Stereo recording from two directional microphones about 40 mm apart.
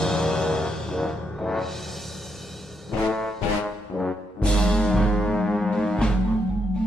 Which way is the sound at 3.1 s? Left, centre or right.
Centre.